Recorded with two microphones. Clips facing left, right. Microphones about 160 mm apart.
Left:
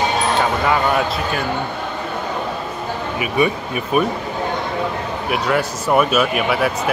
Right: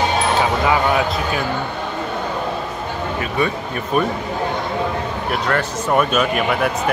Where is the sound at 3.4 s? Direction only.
15° left (ahead or behind).